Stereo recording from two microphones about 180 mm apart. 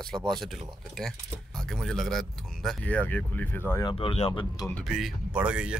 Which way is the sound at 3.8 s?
30° left (ahead or behind).